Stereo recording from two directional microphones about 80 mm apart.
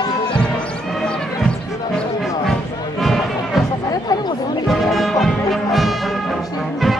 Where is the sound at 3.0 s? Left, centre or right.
Centre.